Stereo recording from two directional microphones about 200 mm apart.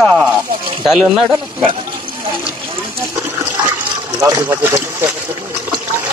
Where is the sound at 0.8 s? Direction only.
Centre (ahead or behind).